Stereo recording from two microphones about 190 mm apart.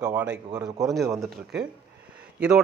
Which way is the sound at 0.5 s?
20° right (ahead or behind).